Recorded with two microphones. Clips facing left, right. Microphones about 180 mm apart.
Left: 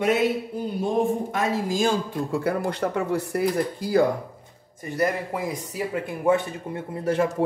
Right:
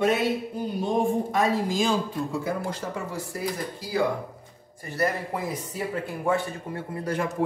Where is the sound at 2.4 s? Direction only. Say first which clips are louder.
Left 5 dB; 60° left (ahead or behind).